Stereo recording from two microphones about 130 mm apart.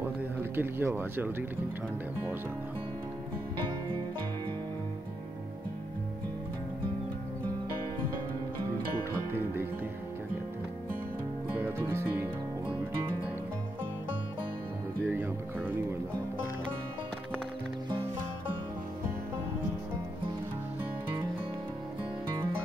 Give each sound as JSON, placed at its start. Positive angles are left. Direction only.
{"t": 0.6, "sound": "speech", "side_deg": -15}
{"t": 11.5, "sound": "music", "side_deg": -15}
{"t": 15.0, "sound": "music", "side_deg": -15}